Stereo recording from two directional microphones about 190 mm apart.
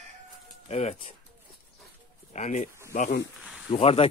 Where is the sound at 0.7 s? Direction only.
35° left (ahead or behind).